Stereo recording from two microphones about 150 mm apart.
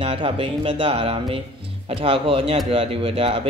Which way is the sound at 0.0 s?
35° right (ahead or behind).